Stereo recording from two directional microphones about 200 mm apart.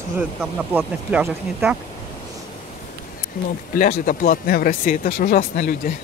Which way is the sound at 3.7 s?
45° left (ahead or behind).